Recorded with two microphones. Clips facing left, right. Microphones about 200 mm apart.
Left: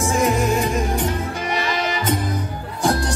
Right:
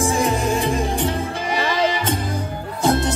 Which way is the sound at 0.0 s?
30° right (ahead or behind).